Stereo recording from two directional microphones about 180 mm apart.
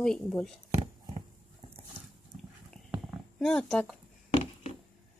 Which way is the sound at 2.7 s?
Centre (ahead or behind).